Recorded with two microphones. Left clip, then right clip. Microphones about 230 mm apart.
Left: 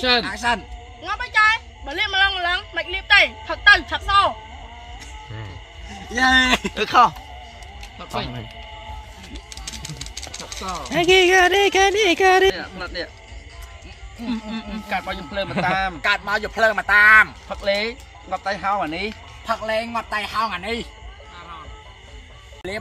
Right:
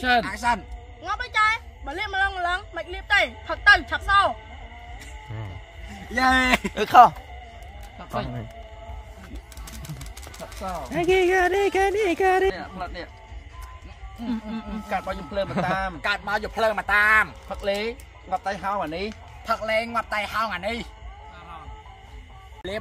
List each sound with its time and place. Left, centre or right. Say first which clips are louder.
0.2 s speech: left 2 dB; right
1.0 s a woman's voice: left 4 dB; centre
6.1 s speech: left 3 dB; right
6.7 s speech: right 5 dB; right
9.3 s music: left 8 dB; right
10.9 s speech: left 6 dB; centre
12.5 s speech: left 4 dB; right
14.3 s speech: left 3 dB; right
16.0 s a woman's voice: left 5 dB; centre
17.5 s speech: left 4 dB; right
19.4 s speech: left 1 dB; right
22.6 s a woman's voice: left 2 dB; centre